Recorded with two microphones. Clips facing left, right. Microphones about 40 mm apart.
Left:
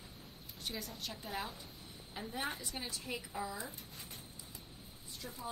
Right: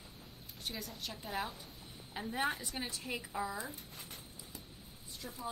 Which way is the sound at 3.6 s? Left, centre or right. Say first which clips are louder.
Right 2 dB; right.